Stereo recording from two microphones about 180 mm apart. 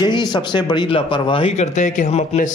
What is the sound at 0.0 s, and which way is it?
A man's voice, 25° left (ahead or behind).